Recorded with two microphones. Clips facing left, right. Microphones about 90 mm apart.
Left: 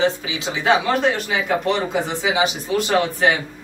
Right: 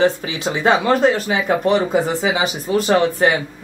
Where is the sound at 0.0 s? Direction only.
45° right (ahead or behind).